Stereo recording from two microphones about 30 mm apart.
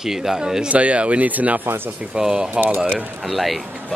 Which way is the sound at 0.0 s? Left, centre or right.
Centre.